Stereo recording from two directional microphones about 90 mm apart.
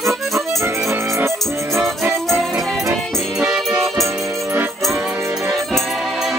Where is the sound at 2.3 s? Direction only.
Centre (ahead or behind).